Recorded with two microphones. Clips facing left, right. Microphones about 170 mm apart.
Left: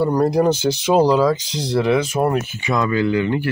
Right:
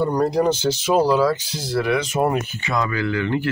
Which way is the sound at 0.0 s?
10° left (ahead or behind).